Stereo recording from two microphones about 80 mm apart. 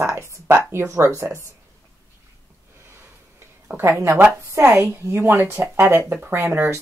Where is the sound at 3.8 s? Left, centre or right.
Right.